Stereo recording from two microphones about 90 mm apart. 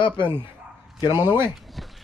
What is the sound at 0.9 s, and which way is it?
Speech, 50° left (ahead or behind).